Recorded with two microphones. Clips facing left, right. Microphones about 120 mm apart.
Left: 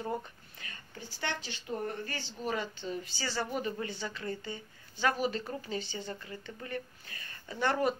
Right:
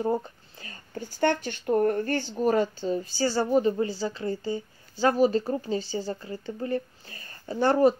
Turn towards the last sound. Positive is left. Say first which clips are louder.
# right 9 dB
turn(degrees=-35)  # may be behind; listen again after turning